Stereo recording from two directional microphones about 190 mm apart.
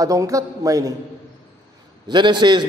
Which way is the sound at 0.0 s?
15° right (ahead or behind).